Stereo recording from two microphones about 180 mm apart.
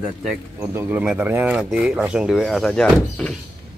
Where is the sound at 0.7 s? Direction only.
10° right (ahead or behind).